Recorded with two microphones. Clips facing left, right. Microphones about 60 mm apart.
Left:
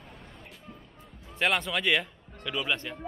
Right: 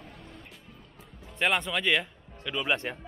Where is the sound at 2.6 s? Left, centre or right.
Right.